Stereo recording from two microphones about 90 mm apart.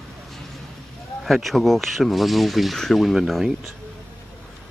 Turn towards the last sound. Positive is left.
turn(degrees=0)  # may be behind; listen again after turning